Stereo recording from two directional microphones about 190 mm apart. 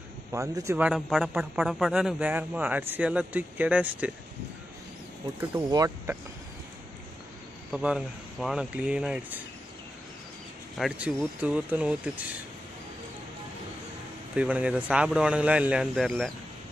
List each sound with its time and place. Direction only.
0.3 s a man's voice: 15° right (ahead or behind)
5.5 s a man's voice: 15° right (ahead or behind)
7.7 s speech: 5° right (ahead or behind)
10.8 s speech: 5° right (ahead or behind)
14.3 s speech: 5° right (ahead or behind)